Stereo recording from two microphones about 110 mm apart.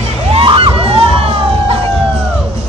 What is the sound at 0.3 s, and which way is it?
Vehicle, 55° right (ahead or behind).